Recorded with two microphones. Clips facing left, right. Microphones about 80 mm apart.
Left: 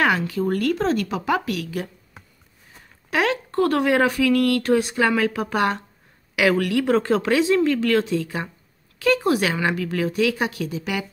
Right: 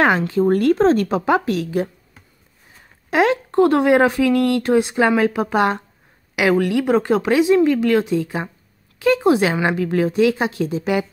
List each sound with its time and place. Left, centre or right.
0.3 s speech: right
3.1 s speech: right